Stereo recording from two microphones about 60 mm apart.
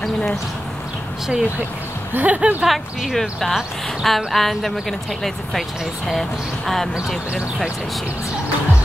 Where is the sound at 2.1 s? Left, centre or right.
Right.